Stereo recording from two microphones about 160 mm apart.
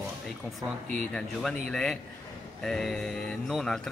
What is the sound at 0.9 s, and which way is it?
Speech, 5° left (ahead or behind).